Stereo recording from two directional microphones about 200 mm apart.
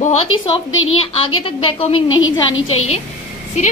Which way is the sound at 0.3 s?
90° left.